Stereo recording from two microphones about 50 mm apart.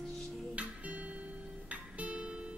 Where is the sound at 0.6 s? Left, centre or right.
Right.